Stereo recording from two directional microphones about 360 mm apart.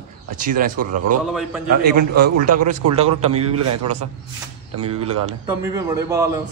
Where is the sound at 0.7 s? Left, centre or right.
Right.